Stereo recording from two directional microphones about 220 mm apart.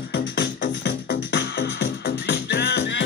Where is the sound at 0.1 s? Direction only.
55° left (ahead or behind).